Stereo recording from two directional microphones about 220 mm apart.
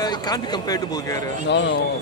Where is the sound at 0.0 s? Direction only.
20° left (ahead or behind).